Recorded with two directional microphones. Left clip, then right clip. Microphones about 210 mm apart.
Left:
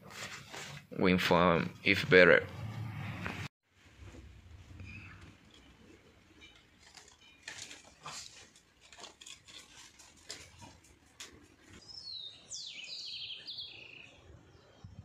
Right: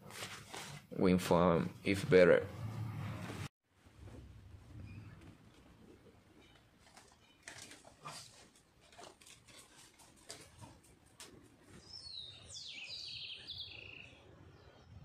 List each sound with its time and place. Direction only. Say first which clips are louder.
0.9 s speech: left 4 dB; 5° right (ahead or behind)
13.5 s bird: left 2 dB; 15° left (ahead or behind)